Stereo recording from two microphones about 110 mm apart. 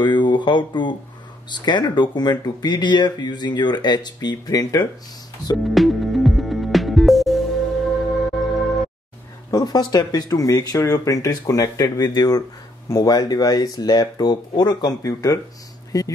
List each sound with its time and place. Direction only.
0.0 s speech: 45° left (ahead or behind)
5.6 s music: centre (ahead or behind)
9.5 s speech: 35° left (ahead or behind)